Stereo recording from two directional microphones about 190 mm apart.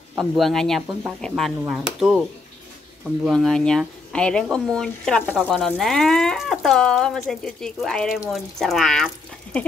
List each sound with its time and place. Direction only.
0.1 s speech: centre (ahead or behind)
3.3 s speech: centre (ahead or behind)